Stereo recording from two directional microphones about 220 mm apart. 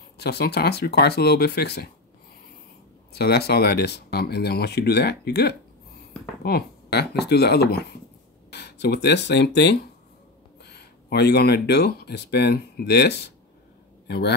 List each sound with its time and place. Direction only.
0.2 s speech: 50° left (ahead or behind)
3.1 s speech: 45° left (ahead or behind)